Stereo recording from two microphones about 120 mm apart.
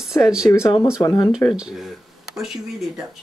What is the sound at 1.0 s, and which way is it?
Speech, 30° left (ahead or behind).